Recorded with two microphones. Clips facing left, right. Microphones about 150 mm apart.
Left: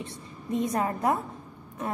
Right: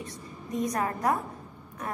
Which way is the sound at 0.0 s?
25° left (ahead or behind).